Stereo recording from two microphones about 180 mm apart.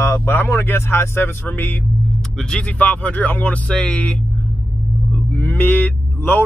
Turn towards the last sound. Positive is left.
turn(degrees=10)  # may be behind; listen again after turning